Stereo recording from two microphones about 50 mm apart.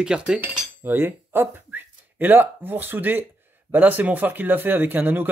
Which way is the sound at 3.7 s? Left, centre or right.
Right.